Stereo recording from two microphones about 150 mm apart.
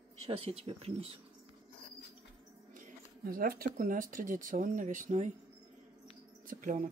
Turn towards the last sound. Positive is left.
turn(degrees=-60)  # may be behind; listen again after turning